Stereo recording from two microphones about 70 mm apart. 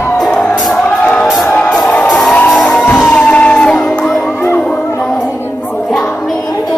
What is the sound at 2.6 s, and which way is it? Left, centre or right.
Music, left.